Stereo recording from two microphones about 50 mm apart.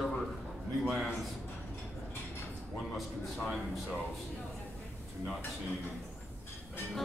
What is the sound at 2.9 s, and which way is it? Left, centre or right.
Speech, centre.